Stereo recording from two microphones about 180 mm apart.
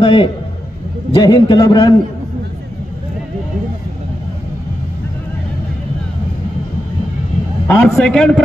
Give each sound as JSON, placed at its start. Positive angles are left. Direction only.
{"t": 0.0, "sound": "a man's voice", "side_deg": 30}
{"t": 7.6, "sound": "a man's voice", "side_deg": 5}